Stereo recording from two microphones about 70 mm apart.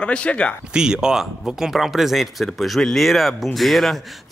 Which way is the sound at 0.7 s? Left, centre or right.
Centre.